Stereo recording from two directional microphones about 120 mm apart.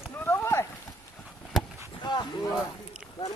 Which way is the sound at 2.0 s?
40° left (ahead or behind).